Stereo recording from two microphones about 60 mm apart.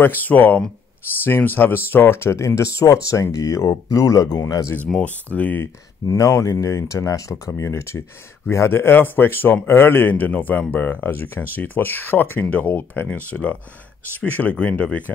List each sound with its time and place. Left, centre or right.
0.0 s speech: left
5.0 s speech: left
6.0 s speech: left
7.1 s speech: left
12.4 s speech: left